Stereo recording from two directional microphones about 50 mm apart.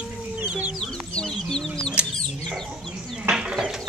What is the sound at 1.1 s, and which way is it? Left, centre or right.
Chicken, centre.